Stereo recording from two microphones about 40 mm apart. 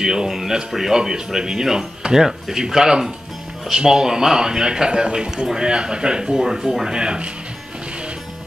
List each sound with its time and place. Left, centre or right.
0.0 s a man's voice: centre
6.9 s speech: right